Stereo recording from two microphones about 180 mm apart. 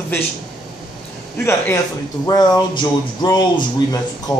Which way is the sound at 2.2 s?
20° left (ahead or behind).